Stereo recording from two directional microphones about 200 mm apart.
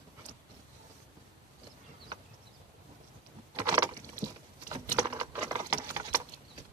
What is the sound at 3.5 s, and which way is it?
Vehicle, 15° right (ahead or behind).